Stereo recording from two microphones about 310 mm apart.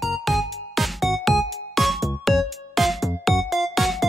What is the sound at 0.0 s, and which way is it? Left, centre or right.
Music, centre.